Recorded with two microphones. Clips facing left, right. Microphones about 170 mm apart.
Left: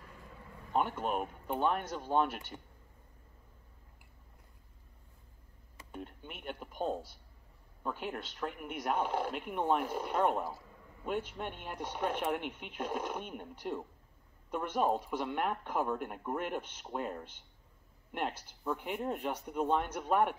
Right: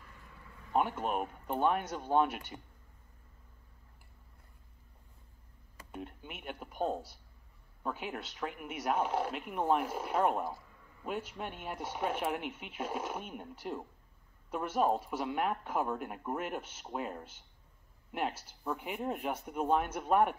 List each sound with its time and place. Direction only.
0.7 s speech: 5° right (ahead or behind)
5.9 s speech: 5° right (ahead or behind)